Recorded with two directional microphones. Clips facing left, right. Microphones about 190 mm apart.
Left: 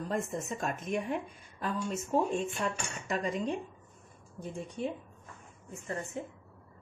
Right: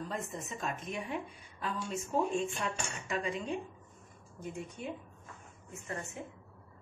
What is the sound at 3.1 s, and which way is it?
Speech, 40° left (ahead or behind).